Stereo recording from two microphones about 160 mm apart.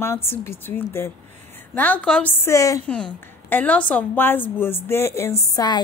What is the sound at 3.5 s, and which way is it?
A woman's voice, 10° left (ahead or behind).